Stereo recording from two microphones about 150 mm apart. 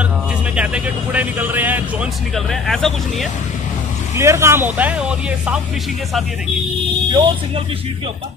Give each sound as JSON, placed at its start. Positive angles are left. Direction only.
{"t": 0.6, "sound": "speech", "side_deg": -10}
{"t": 2.3, "sound": "speech", "side_deg": 0}
{"t": 4.2, "sound": "speech", "side_deg": -20}
{"t": 7.1, "sound": "speech", "side_deg": -30}